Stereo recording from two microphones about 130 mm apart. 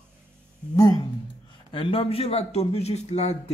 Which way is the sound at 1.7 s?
40° left (ahead or behind).